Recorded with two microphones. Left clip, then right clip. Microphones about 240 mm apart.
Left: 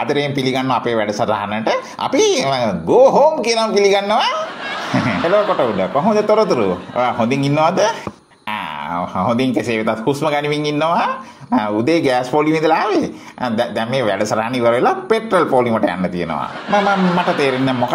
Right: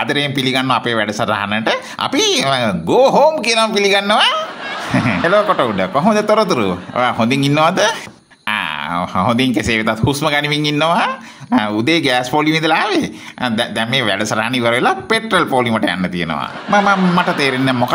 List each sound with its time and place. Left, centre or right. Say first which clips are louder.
0.0 s speech: right 1 dB; right
4.9 s speech: right 2 dB; centre
5.8 s a man's voice: right 1 dB; right
16.7 s a man's voice: right 2 dB; centre
17.6 s speech: right 2 dB; right